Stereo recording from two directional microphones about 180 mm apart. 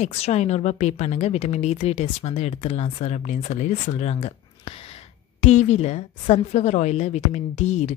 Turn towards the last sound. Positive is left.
turn(degrees=40)  # may be behind; listen again after turning